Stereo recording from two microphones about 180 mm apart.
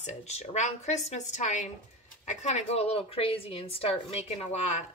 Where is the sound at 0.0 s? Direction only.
35° left (ahead or behind).